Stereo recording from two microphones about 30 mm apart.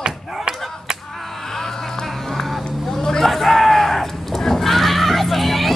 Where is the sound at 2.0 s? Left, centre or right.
Centre.